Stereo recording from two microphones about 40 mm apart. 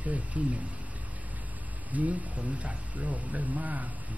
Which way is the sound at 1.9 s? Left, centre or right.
Right.